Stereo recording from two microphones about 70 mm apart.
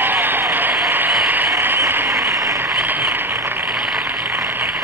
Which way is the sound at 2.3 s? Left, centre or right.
Right.